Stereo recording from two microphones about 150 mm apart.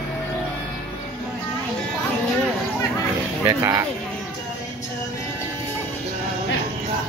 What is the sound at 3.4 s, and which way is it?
Speech, 20° right (ahead or behind).